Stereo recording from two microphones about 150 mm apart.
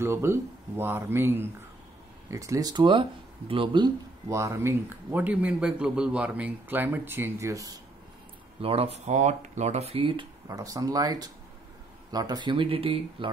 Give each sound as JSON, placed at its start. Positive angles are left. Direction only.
{"t": 0.0, "sound": "speech", "side_deg": -15}
{"t": 8.5, "sound": "speech", "side_deg": -40}
{"t": 10.5, "sound": "speech", "side_deg": -25}